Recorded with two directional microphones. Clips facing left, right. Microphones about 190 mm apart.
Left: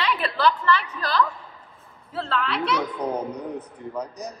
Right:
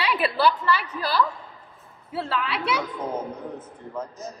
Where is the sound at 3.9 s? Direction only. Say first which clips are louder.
Left 1 dB; 15° left (ahead or behind).